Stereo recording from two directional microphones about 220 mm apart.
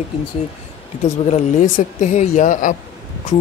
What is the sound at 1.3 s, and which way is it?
Speech, 35° left (ahead or behind).